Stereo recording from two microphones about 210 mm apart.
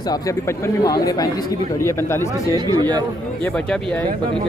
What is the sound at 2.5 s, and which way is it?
Speech, 20° right (ahead or behind).